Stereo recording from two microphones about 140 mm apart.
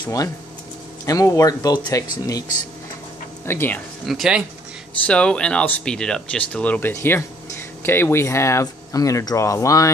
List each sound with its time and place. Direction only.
0.0 s speech: 25° left (ahead or behind)
3.4 s speech: 15° left (ahead or behind)
4.0 s speech: centre (ahead or behind)
5.0 s speech: 5° left (ahead or behind); by 9.9 s 25° left (ahead or behind)